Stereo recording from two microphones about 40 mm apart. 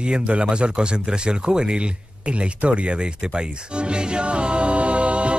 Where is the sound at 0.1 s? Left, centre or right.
Right.